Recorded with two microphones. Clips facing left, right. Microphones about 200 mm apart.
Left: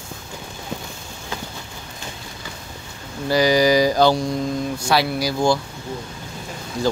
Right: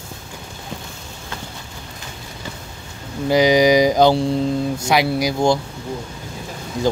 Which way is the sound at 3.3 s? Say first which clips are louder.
Right 3 dB; 20° right (ahead or behind).